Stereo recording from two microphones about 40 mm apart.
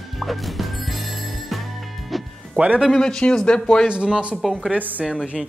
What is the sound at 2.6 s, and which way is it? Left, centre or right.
Speech, right.